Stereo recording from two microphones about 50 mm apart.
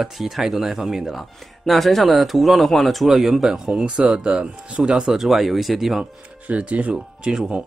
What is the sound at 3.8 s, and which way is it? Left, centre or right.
Speech, centre.